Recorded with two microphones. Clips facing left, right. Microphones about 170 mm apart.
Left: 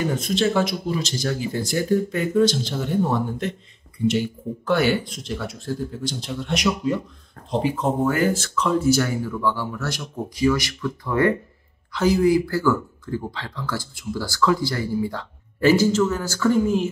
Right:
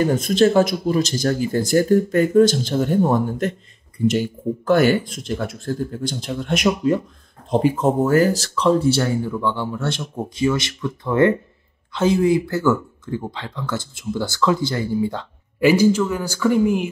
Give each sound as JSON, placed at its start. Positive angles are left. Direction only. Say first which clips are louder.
{"t": 0.0, "sound": "speech", "louder": "right 6 dB", "side_deg": -45}
{"t": 4.6, "sound": "speech", "louder": "right 4 dB", "side_deg": -45}